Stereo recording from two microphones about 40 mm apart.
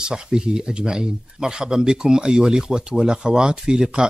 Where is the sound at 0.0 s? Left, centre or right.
Centre.